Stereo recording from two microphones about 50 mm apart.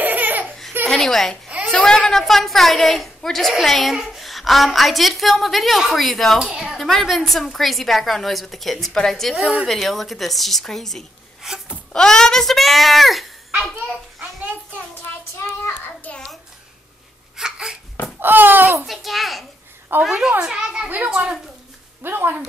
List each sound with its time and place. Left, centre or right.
0.0 s laughter: right
0.8 s a woman's voice: centre
6.4 s a woman's voice: centre
6.8 s a woman's voice: centre
11.4 s speech: centre
11.9 s a child's voice: centre
16.1 s a sound: left
17.4 s a sound: centre
18.2 s a sound: right
18.9 s a woman's voice: centre
19.9 s speech: right
20.4 s a child's voice: centre
22.0 s speech: right